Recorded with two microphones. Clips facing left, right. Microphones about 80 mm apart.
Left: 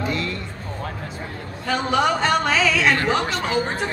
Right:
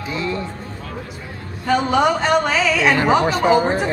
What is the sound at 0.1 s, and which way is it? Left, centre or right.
Music, centre.